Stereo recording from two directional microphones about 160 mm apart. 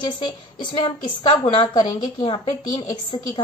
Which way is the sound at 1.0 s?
30° left (ahead or behind).